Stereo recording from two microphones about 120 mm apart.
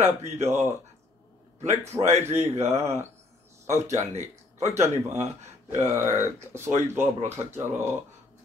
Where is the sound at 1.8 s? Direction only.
25° right (ahead or behind).